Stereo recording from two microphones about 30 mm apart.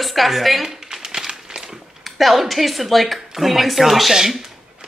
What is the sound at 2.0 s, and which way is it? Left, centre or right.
Speech, centre.